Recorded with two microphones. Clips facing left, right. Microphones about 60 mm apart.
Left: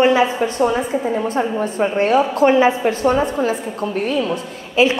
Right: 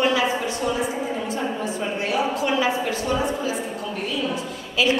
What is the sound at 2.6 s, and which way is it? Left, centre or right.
Speech, left.